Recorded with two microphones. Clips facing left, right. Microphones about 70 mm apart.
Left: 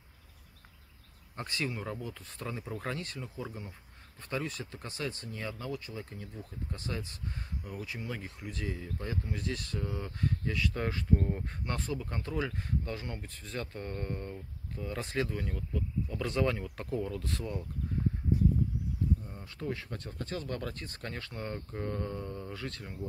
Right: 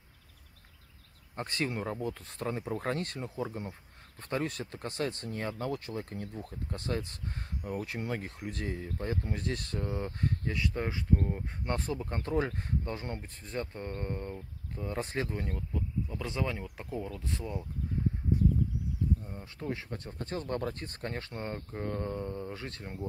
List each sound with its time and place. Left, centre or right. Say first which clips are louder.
1.3 s speech: right 2 dB; right
10.8 s speech: even; centre
11.6 s speech: right 3 dB; right
15.5 s speech: even; centre
19.2 s speech: even; right